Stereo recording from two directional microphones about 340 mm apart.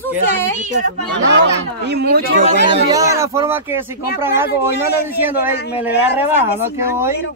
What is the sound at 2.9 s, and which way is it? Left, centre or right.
Speech, centre.